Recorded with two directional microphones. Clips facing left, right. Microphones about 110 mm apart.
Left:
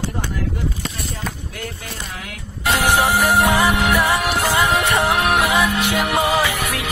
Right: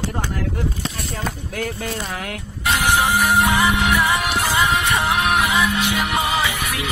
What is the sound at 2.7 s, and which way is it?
Music, 20° left (ahead or behind).